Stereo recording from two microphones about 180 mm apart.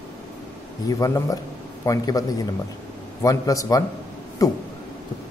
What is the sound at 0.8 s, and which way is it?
A man's voice, 15° left (ahead or behind).